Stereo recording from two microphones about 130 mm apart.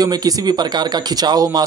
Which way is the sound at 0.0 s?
30° right (ahead or behind).